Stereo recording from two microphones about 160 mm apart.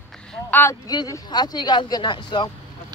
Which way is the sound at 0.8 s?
25° left (ahead or behind).